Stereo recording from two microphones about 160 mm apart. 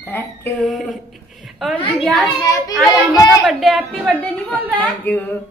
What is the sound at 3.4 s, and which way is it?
Speech, centre (ahead or behind).